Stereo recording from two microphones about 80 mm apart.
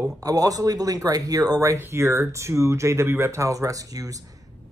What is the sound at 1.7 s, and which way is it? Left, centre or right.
Speech, right.